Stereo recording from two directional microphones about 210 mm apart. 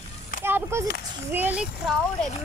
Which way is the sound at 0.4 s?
10° right (ahead or behind).